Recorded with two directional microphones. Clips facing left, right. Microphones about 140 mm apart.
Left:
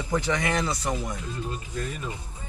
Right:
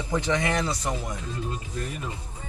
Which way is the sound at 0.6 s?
Centre (ahead or behind).